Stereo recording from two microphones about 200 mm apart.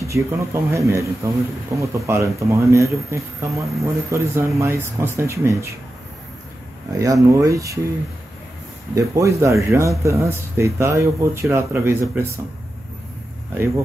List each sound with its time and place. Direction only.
0.0 s speech: 15° right (ahead or behind)
7.0 s speech: 15° right (ahead or behind)
8.9 s speech: 15° right (ahead or behind)